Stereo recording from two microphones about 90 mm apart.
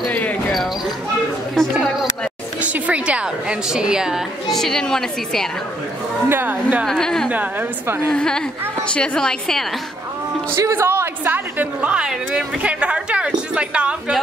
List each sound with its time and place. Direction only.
1.5 s a woman's voice: centre (ahead or behind)
2.6 s a woman's voice: 15° right (ahead or behind); by 5.5 s 5° left (ahead or behind)
6.2 s speech: 20° right (ahead or behind)
6.9 s a woman's voice: 5° left (ahead or behind)
10.5 s a woman's voice: 30° right (ahead or behind); by 14.1 s 10° right (ahead or behind)